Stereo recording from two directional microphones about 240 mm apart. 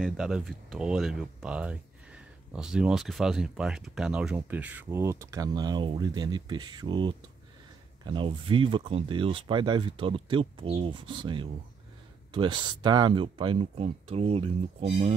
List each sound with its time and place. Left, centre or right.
0.0 s speech: centre; by 15.1 s right